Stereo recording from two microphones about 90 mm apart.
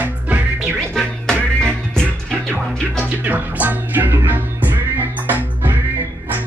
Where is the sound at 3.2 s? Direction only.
20° right (ahead or behind).